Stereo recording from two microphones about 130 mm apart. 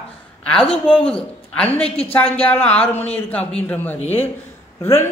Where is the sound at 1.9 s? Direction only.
50° left (ahead or behind).